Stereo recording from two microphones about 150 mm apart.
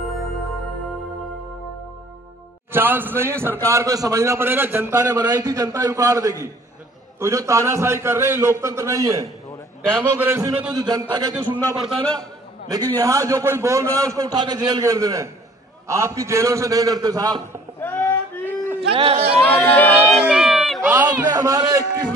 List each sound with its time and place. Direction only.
2.7 s a man's voice: 15° right (ahead or behind)
9.8 s a man's voice: 5° left (ahead or behind)
10.1 s a man's voice: 15° right (ahead or behind)
10.7 s a man's voice: 25° right (ahead or behind)
11.8 s a man's voice: 5° left (ahead or behind)
12.6 s a man's voice: 25° right (ahead or behind)
17.7 s a sound: 15° left (ahead or behind)
18.8 s speech: 40° right (ahead or behind)
19.7 s speech: 10° left (ahead or behind)
20.2 s a sound: 5° right (ahead or behind)
20.9 s a man's voice: 10° right (ahead or behind)
21.3 s a man's voice: 25° right (ahead or behind)